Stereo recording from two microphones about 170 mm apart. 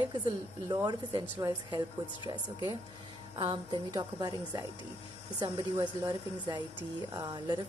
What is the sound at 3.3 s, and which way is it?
A woman's voice, 30° right (ahead or behind).